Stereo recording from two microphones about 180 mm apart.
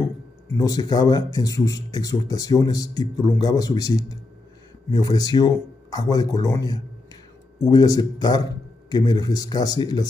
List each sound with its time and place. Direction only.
0.5 s speech: 20° left (ahead or behind)